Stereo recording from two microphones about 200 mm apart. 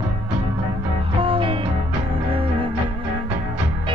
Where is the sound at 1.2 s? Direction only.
25° right (ahead or behind).